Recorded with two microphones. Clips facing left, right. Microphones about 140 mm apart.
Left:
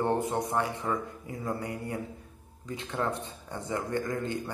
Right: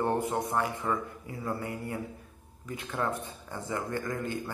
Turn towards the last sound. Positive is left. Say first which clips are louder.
# left 2 dB
turn(degrees=20)  # may be behind; listen again after turning